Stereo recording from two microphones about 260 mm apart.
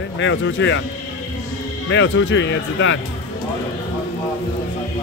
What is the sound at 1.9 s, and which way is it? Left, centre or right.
Speech, left.